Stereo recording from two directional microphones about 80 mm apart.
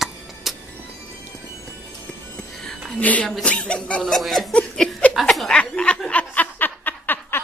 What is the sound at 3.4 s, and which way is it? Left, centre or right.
Chuckle, centre.